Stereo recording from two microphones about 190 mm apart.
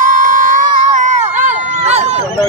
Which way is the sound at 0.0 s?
45° right (ahead or behind).